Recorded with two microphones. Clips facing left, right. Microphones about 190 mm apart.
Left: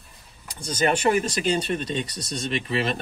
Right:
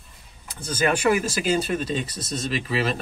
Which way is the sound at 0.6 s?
5° right (ahead or behind).